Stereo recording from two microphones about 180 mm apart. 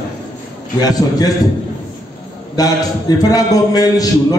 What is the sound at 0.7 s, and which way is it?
Speech, 20° left (ahead or behind).